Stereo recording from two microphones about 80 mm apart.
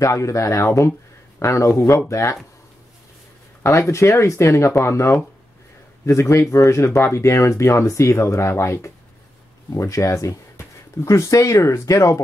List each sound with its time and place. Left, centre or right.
0.0 s speech: left
3.6 s speech: left